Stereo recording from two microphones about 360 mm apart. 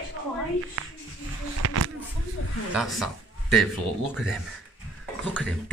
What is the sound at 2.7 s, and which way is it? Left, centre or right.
Speech, centre.